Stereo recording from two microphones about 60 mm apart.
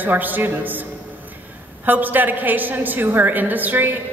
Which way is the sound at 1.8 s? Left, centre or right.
Right.